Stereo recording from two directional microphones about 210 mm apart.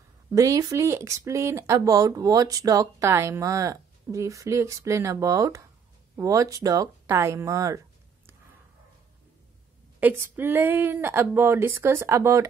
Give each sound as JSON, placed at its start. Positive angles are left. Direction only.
{"t": 0.3, "sound": "speech", "side_deg": -15}
{"t": 9.9, "sound": "speech", "side_deg": -10}